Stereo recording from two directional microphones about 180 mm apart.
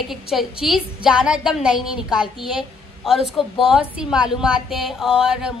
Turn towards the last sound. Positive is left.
turn(degrees=-5)  # may be behind; listen again after turning